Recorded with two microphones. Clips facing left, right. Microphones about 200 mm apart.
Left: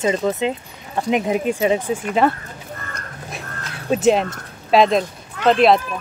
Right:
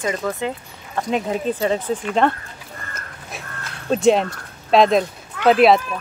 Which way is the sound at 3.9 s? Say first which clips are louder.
Even; centre (ahead or behind).